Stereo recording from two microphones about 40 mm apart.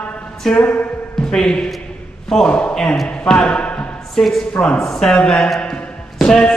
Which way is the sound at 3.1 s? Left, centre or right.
Left.